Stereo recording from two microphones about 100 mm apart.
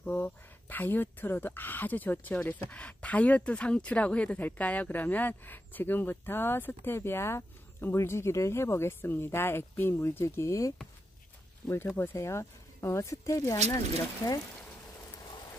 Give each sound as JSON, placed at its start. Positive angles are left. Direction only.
{"t": 0.0, "sound": "speech", "side_deg": 20}
{"t": 12.0, "sound": "speech", "side_deg": 25}